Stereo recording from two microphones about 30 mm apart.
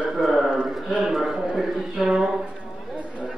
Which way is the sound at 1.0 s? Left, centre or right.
Centre.